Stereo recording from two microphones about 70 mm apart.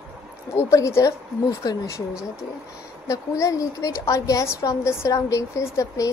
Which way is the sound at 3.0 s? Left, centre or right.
Left.